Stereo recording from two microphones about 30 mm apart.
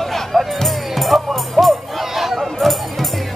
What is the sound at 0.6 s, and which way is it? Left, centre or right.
Music, centre.